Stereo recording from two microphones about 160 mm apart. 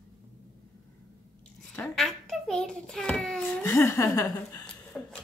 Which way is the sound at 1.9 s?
Centre (ahead or behind).